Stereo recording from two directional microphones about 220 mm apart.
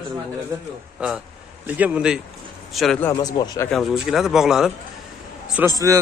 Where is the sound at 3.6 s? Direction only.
Centre (ahead or behind).